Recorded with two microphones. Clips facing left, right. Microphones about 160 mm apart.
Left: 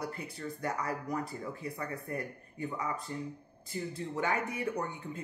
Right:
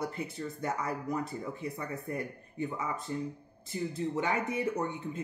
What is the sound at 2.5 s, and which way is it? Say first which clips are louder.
Speech: right 1 dB; 20° right (ahead or behind).